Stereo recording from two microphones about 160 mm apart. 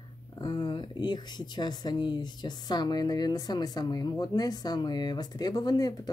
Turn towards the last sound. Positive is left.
turn(degrees=25)  # may be behind; listen again after turning